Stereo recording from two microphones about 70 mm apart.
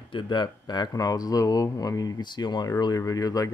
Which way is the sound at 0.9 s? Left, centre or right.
Left.